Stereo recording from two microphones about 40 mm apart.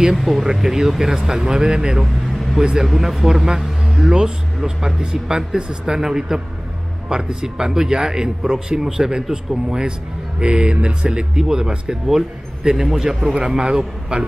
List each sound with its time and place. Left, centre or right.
0.1 s speech: centre
2.8 s a man's voice: centre; by 14.2 s right